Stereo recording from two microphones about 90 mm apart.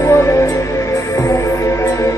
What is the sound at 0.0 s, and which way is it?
Music, 35° left (ahead or behind).